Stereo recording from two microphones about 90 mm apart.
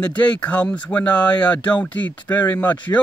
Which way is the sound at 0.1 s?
15° left (ahead or behind).